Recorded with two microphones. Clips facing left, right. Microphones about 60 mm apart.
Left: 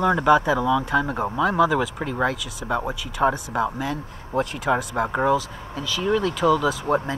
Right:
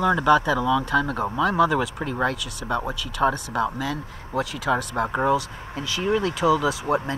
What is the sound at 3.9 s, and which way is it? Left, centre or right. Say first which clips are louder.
Speech: left 1 dB; left.